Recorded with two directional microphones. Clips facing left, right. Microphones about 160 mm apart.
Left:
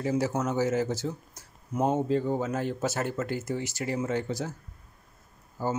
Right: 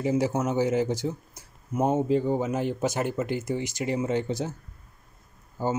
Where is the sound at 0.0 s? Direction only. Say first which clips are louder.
Right 3 dB; 10° right (ahead or behind).